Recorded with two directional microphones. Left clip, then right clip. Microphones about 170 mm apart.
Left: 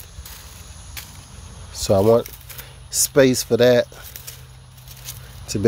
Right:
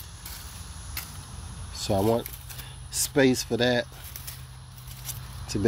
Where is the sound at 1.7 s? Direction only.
60° left (ahead or behind).